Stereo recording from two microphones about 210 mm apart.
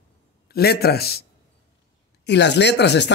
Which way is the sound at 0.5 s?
50° left (ahead or behind).